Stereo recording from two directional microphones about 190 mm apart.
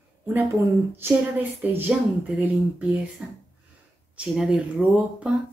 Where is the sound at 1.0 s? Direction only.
10° right (ahead or behind).